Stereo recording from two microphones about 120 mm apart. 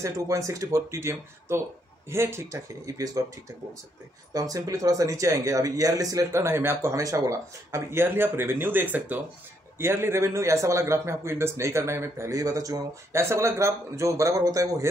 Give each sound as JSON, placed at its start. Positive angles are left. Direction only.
{"t": 0.0, "sound": "a man's voice", "side_deg": -25}
{"t": 4.3, "sound": "a man's voice", "side_deg": -30}